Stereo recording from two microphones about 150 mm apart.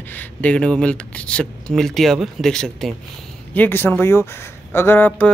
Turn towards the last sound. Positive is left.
turn(degrees=10)  # may be behind; listen again after turning